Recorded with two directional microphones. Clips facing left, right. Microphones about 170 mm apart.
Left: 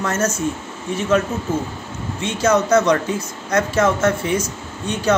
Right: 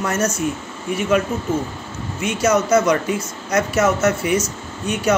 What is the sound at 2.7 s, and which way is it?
A man's voice, 10° right (ahead or behind).